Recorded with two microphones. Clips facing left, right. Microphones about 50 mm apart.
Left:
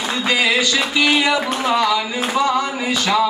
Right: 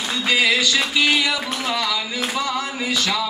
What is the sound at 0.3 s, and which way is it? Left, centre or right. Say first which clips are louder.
Speech: left 1 dB; centre.